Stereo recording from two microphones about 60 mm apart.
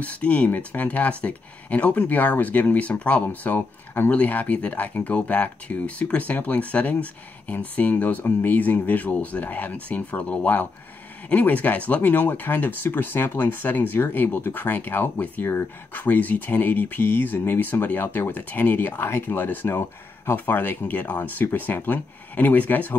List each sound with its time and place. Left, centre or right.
0.0 s speech: left